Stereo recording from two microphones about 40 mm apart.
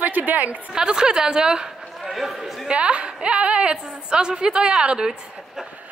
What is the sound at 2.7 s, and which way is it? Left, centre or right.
A woman's voice, right.